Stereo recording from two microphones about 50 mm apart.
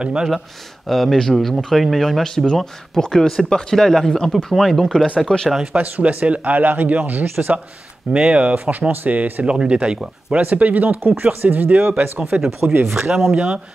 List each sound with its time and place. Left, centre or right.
0.0 s speech: centre
0.8 s speech: centre
5.3 s speech: centre
5.7 s speech: right
8.1 s speech: centre
8.5 s speech: right
9.5 s speech: right
12.2 s speech: centre
13.3 s speech: centre